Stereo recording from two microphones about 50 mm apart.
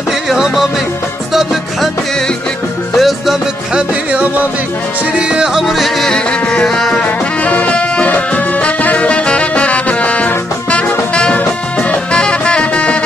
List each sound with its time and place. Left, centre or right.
0.1 s music: centre
2.9 s music: centre
3.7 s music: right
5.5 s music: centre
6.1 s music: centre
7.1 s music: left
11.3 s music: left